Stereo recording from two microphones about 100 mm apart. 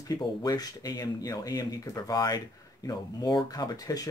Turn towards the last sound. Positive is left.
turn(degrees=40)  # may be behind; listen again after turning